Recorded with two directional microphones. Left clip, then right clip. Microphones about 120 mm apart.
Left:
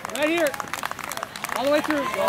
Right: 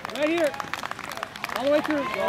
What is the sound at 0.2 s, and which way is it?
Speech, 45° left (ahead or behind).